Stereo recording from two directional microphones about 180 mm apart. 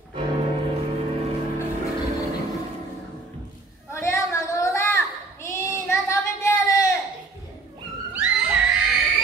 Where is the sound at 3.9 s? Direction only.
15° left (ahead or behind).